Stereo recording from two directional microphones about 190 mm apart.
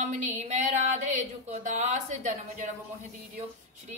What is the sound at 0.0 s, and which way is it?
Speech, 40° right (ahead or behind).